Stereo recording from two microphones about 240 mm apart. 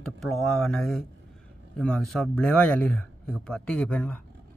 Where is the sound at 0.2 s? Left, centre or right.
Centre.